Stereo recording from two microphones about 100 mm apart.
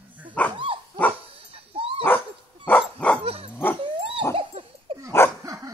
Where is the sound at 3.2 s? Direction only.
85° right.